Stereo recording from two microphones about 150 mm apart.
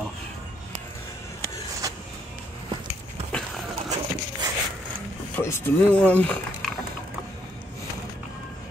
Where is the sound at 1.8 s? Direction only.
25° right (ahead or behind).